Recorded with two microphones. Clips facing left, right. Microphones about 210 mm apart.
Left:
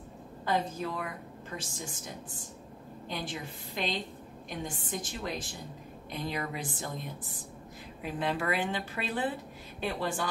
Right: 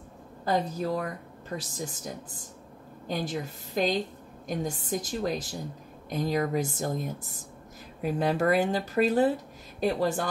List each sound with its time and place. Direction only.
0.5 s speech: 40° right (ahead or behind)
3.1 s speech: 40° right (ahead or behind)